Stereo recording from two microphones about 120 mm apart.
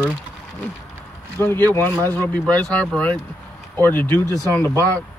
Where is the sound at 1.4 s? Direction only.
20° left (ahead or behind).